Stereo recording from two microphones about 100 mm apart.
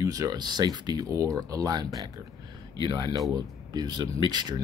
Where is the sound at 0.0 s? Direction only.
35° right (ahead or behind).